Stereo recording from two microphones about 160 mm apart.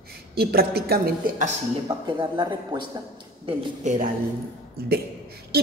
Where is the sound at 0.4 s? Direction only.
75° right (ahead or behind).